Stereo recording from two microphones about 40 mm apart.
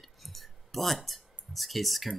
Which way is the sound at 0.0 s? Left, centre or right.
Centre.